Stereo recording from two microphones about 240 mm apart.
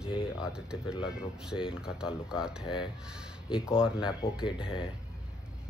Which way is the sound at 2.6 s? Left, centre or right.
Centre.